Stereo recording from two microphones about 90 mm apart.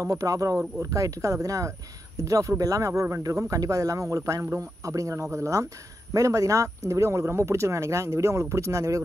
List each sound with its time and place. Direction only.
0.0 s speech: 40° right (ahead or behind)